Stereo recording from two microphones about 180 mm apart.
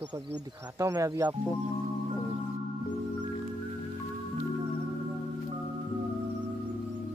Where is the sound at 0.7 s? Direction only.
15° right (ahead or behind).